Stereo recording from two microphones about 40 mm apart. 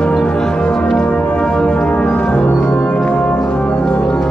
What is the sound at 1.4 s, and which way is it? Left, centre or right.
Music, left.